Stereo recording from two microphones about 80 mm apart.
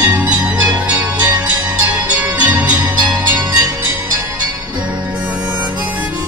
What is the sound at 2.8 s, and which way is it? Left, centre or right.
Music, right.